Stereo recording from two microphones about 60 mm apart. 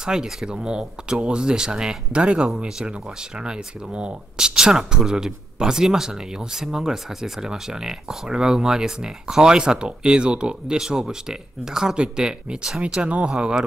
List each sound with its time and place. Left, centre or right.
0.0 s speech: centre
12.8 s speech: centre